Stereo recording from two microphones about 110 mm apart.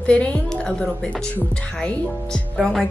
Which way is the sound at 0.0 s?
10° left (ahead or behind).